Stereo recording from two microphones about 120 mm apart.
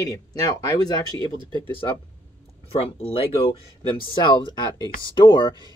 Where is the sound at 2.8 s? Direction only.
50° left (ahead or behind).